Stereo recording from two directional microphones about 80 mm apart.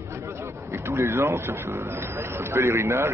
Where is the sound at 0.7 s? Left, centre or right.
Right.